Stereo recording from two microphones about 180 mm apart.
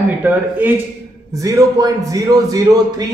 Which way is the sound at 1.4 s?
20° right (ahead or behind).